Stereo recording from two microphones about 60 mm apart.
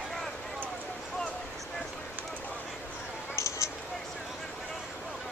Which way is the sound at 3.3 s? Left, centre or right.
Left.